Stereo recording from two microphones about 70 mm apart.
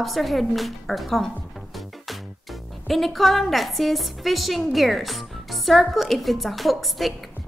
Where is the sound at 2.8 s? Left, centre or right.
Centre.